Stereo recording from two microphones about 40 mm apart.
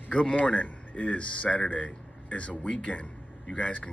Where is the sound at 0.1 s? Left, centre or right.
Left.